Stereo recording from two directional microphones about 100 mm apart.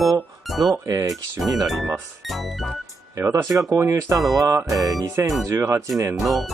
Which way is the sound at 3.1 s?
35° right (ahead or behind).